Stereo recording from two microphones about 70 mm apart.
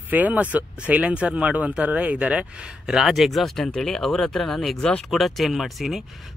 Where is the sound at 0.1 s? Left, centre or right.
Right.